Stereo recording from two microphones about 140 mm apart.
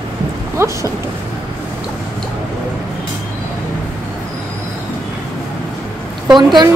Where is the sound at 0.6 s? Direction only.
20° right (ahead or behind).